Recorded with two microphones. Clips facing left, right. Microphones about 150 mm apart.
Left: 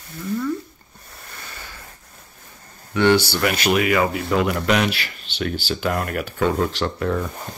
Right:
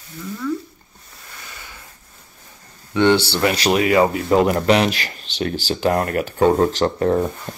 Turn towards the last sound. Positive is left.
turn(degrees=-40)  # may be behind; listen again after turning